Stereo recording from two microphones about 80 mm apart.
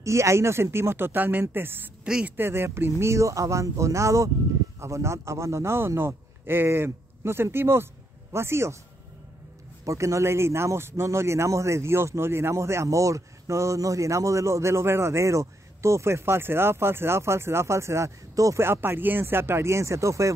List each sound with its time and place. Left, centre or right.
0.0 s a man's voice: right
9.8 s speech: right
18.6 s speech: right